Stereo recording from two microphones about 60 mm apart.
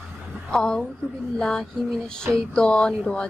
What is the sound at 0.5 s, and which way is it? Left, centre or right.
Music, centre.